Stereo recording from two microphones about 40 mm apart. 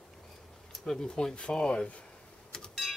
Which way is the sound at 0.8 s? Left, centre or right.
Centre.